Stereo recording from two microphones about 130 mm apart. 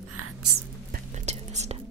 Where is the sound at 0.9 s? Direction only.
60° right (ahead or behind).